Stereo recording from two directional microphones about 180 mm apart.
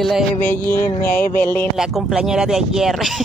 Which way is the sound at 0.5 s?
10° left (ahead or behind).